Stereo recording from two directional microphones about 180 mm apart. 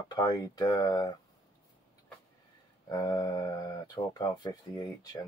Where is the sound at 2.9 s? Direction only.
20° left (ahead or behind).